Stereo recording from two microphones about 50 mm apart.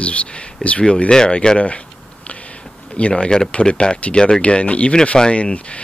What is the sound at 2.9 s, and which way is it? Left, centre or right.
Speech, left.